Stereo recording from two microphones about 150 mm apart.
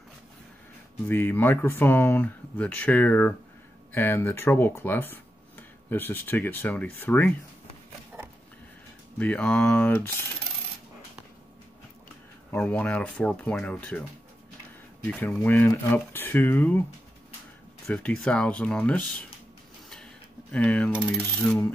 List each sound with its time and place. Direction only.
1.0 s speech: 15° left (ahead or behind)
8.1 s a sound: 10° right (ahead or behind)
9.2 s speech: 10° left (ahead or behind)
12.4 s speech: 10° left (ahead or behind)
15.0 s speech: 10° left (ahead or behind)
17.8 s speech: 5° left (ahead or behind)
20.5 s speech: 10° left (ahead or behind)